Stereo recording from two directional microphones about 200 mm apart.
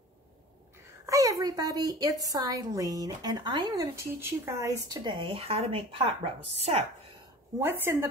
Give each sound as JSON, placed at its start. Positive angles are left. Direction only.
{"t": 1.0, "sound": "a woman's voice", "side_deg": -15}
{"t": 7.6, "sound": "a woman's voice", "side_deg": -10}